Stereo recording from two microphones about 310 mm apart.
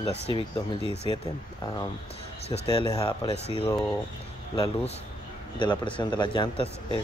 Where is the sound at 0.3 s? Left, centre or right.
Centre.